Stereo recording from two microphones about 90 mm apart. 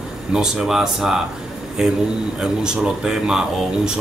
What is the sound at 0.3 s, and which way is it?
Speech, 5° right (ahead or behind).